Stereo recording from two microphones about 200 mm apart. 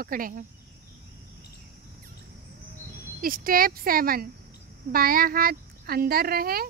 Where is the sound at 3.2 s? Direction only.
45° right (ahead or behind).